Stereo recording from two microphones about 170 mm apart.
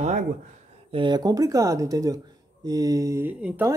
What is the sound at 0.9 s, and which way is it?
Speech, 25° right (ahead or behind).